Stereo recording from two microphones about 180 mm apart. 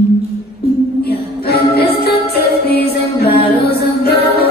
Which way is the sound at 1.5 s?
60° left (ahead or behind).